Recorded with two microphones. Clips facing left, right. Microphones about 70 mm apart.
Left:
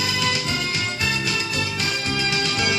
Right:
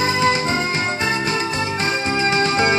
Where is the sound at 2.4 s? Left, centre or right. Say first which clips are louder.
Right 7 dB; right.